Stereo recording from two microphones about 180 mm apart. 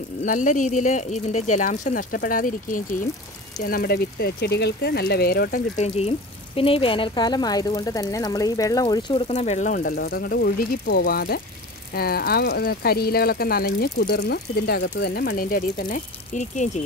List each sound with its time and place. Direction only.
0.2 s speech: 45° left (ahead or behind)
5.8 s speech: 35° left (ahead or behind)
9.3 s speech: 40° left (ahead or behind)
9.9 s speech: 60° left (ahead or behind); by 16.8 s 40° left (ahead or behind)